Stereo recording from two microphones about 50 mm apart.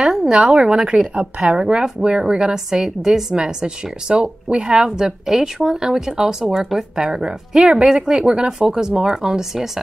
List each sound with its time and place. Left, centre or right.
0.0 s a woman's voice: centre